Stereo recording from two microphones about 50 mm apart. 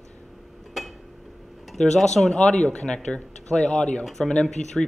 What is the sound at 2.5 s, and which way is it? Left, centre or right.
Speech, centre.